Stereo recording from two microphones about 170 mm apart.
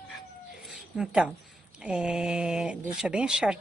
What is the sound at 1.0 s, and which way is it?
Speech, 5° right (ahead or behind).